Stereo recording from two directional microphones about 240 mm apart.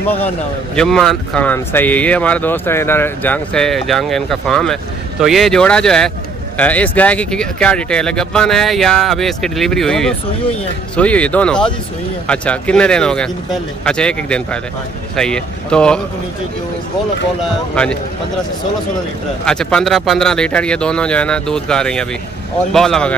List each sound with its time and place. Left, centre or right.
0.7 s a man's voice: centre
19.4 s a man's voice: centre